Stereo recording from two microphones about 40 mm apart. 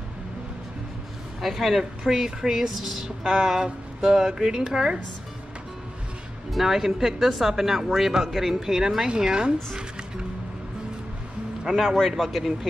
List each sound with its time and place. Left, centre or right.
1.4 s speech: centre
6.5 s speech: centre
12.2 s speech: centre